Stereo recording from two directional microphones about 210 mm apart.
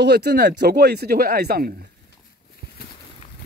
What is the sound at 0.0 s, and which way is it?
Speech, 50° right (ahead or behind).